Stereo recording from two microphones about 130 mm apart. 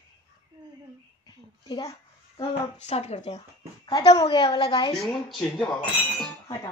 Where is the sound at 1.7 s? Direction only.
30° left (ahead or behind).